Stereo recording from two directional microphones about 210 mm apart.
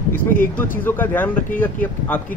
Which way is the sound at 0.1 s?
40° left (ahead or behind).